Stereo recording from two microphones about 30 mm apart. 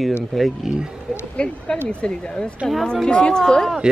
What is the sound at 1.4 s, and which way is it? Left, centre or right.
Speech, left.